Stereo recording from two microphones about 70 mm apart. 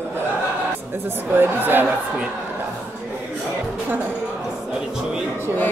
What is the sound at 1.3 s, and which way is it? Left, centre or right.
Speech, right.